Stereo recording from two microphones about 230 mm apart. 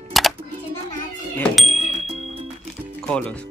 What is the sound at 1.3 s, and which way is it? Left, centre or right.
Speech, centre.